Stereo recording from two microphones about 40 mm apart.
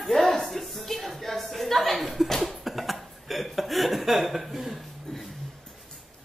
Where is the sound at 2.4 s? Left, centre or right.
Centre.